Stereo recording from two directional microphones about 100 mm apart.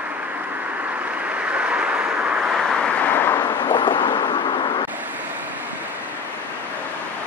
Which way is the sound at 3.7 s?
50° left (ahead or behind).